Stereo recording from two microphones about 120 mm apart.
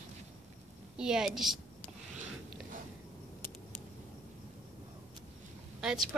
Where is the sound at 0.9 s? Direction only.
5° right (ahead or behind).